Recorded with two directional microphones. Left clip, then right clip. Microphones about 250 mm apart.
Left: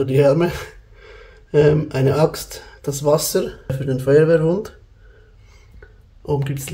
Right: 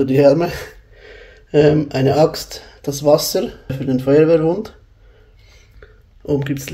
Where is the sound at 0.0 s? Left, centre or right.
Centre.